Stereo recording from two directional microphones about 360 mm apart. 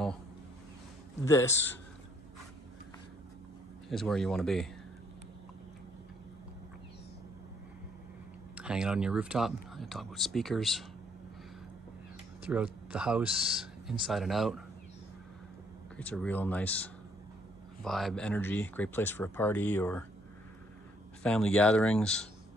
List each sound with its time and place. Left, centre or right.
1.2 s a man's voice: centre
3.9 s speech: centre
8.5 s speech: centre
12.4 s speech: centre
16.0 s speech: centre
21.2 s speech: centre